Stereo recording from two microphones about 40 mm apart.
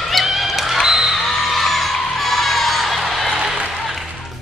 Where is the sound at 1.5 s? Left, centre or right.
Centre.